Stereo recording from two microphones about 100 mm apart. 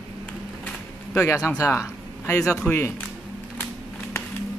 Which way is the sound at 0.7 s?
20° left (ahead or behind).